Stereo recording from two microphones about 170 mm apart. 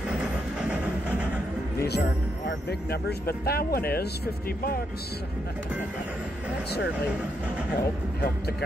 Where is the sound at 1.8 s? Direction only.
70° left (ahead or behind).